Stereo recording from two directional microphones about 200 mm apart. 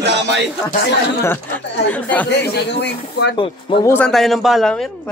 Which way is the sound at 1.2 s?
10° left (ahead or behind).